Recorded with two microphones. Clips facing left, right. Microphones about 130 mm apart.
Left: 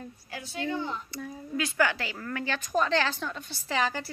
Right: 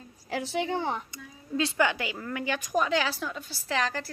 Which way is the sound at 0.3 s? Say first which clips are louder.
Right 4 dB; 90° right.